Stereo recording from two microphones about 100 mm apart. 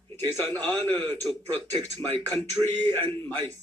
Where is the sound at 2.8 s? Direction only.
25° left (ahead or behind).